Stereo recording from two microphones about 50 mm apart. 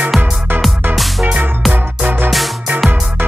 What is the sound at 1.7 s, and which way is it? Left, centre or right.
Music, right.